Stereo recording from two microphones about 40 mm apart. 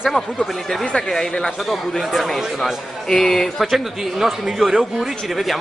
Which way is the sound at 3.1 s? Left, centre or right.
Centre.